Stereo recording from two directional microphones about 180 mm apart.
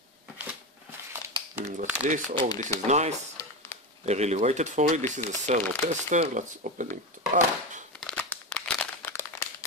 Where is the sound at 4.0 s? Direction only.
40° right (ahead or behind).